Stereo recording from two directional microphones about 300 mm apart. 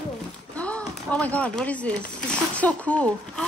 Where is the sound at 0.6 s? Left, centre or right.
Centre.